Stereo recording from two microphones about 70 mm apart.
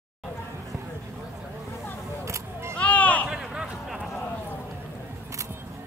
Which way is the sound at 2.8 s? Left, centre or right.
Left.